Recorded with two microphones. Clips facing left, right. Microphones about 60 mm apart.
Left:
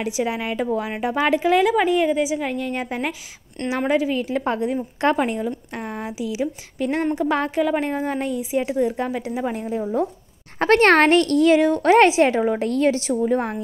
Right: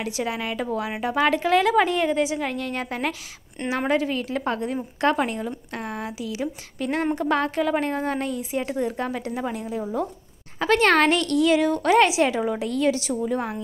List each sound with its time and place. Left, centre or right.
0.0 s a woman's voice: centre
3.6 s a woman's voice: centre
3.9 s a woman's voice: centre
9.5 s speech: left
10.6 s a woman's voice: left